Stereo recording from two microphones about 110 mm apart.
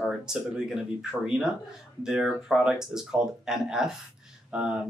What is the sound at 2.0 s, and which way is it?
Speech, 5° right (ahead or behind).